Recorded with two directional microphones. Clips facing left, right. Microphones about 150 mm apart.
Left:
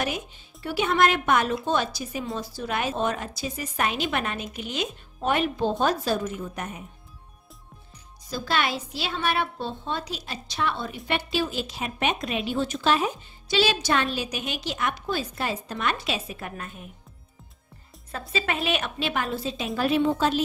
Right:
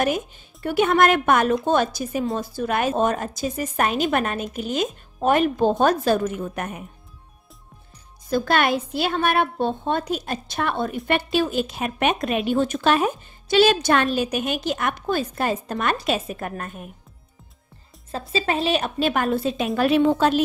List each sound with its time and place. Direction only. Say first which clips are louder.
0.0 s a woman's voice: right 7 dB; 50° right (ahead or behind)
8.3 s a woman's voice: right 7 dB; 55° right (ahead or behind)
18.1 s a woman's voice: right 5 dB; 30° right (ahead or behind); by 20.4 s 60° right (ahead or behind)